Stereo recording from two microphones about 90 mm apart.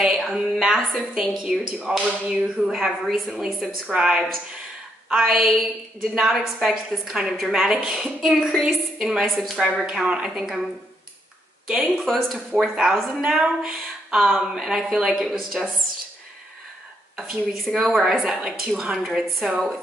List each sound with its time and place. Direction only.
0.0 s a woman's voice: centre (ahead or behind)
17.2 s a woman's voice: centre (ahead or behind)